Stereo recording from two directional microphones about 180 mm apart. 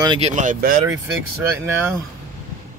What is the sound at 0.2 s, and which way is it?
Speech, 45° right (ahead or behind).